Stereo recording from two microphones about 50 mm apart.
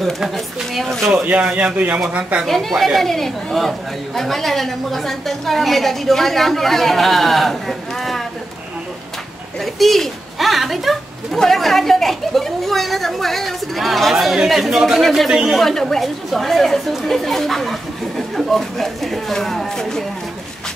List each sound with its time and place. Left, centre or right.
0.7 s a woman's voice: centre
1.2 s speech: right
1.5 s a woman's voice: centre
2.4 s a woman's voice: centre
9.8 s a woman's voice: centre